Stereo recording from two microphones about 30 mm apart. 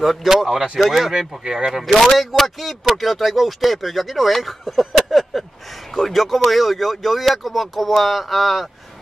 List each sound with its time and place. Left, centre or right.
0.0 s speech: centre
1.1 s speech: right
1.7 s speech: centre
2.0 s speech: centre